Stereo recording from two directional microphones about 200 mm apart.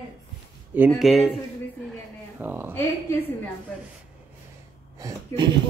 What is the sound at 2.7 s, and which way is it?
Speech, 10° left (ahead or behind).